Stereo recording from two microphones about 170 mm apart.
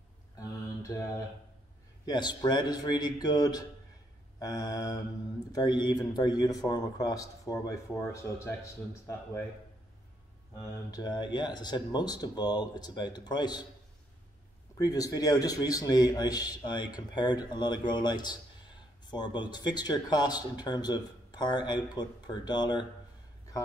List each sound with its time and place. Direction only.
0.9 s a man's voice: 20° left (ahead or behind)
10.9 s a man's voice: 25° left (ahead or behind)
14.8 s a man's voice: 20° left (ahead or behind)